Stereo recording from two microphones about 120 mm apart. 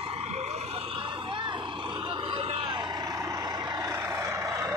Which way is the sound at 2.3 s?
55° right (ahead or behind).